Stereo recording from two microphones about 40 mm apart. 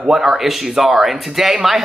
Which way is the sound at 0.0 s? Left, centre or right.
Centre.